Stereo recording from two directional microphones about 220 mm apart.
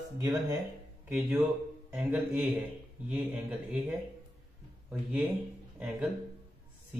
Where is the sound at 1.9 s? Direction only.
5° right (ahead or behind).